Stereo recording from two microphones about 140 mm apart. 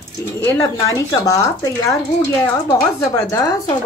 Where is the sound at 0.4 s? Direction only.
20° left (ahead or behind).